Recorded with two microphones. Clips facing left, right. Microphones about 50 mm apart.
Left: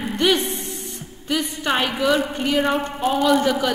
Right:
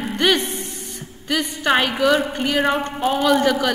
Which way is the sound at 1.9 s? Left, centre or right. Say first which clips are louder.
Right 2 dB; centre.